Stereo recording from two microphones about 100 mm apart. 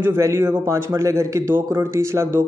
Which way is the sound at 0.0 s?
25° right (ahead or behind).